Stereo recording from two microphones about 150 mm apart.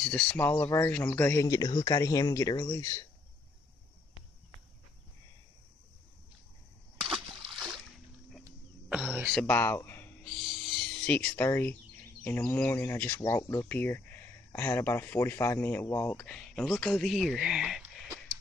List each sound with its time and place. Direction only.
0.0 s speech: 5° left (ahead or behind); by 3.1 s 20° left (ahead or behind)
7.0 s splash: centre (ahead or behind)
8.8 s a sound: 10° right (ahead or behind)
9.3 s speech: 10° left (ahead or behind)
10.2 s wild animals: centre (ahead or behind)
11.1 s speech: 10° left (ahead or behind)
16.2 s speech: 5° left (ahead or behind)